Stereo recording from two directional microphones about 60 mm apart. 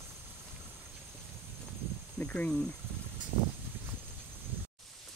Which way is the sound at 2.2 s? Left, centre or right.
Left.